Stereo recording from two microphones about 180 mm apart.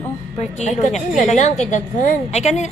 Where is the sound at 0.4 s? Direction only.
40° left (ahead or behind).